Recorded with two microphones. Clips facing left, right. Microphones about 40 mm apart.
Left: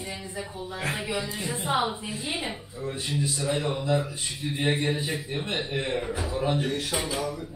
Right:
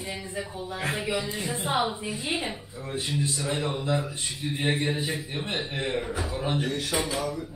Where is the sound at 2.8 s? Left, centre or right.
Centre.